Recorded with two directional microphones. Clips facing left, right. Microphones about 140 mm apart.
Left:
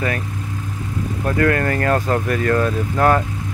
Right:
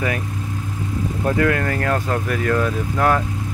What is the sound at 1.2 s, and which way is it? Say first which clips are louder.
Speech: left 1 dB; 10° right (ahead or behind).